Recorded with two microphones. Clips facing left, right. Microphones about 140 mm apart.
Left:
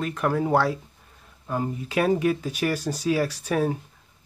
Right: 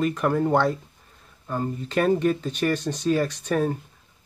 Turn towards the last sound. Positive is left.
turn(degrees=5)  # may be behind; listen again after turning